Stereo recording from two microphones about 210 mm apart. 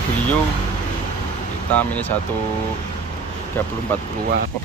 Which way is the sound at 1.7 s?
10° left (ahead or behind).